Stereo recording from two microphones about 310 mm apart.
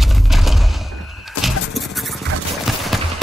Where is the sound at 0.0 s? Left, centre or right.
Centre.